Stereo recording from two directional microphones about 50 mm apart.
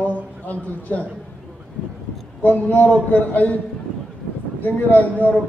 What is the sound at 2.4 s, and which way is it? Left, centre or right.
A man's voice, left.